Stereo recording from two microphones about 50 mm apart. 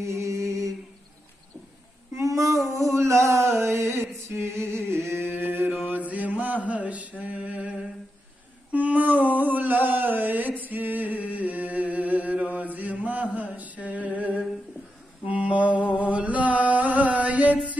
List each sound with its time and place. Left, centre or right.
0.0 s mantra: right
2.1 s a sound: right
2.7 s male singing: right
5.3 s mantra: right
5.9 s mantra: right
8.7 s humming: right
9.5 s a sound: right
15.2 s mantra: right